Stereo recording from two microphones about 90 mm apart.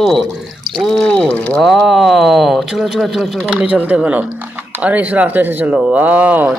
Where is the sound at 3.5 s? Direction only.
15° right (ahead or behind).